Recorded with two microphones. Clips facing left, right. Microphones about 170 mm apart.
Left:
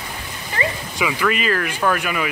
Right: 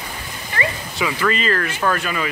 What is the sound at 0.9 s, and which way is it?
Speech, 10° left (ahead or behind).